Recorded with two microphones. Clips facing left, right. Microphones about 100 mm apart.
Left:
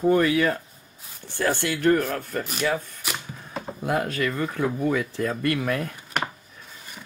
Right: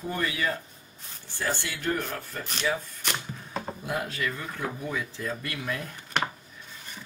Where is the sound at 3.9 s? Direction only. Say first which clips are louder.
Left 8 dB; 55° left (ahead or behind).